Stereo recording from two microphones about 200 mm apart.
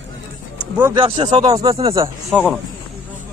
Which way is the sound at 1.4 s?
15° right (ahead or behind).